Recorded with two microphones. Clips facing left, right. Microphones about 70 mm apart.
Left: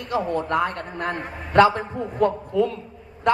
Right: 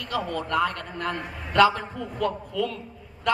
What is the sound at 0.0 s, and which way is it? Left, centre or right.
A woman's voice, left.